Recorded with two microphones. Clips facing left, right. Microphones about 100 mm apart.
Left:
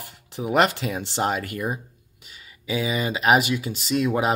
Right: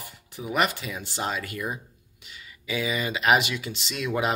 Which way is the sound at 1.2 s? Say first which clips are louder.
Left 5 dB; 50° left (ahead or behind).